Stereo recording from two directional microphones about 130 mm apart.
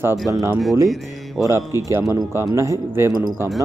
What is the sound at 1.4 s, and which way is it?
Speech, 20° right (ahead or behind).